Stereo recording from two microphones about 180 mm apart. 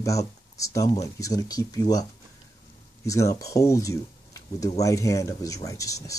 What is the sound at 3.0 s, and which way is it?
Speech, 20° left (ahead or behind).